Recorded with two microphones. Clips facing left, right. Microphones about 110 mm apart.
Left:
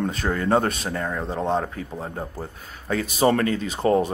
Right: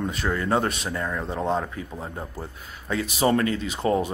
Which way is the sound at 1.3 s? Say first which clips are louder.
Left 2 dB; 20° left (ahead or behind).